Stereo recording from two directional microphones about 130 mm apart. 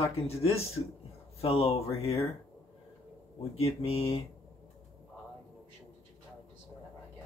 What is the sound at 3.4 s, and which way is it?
Speech, 50° left (ahead or behind).